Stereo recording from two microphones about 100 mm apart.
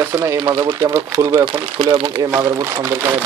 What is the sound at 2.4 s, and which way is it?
Speech, 30° right (ahead or behind).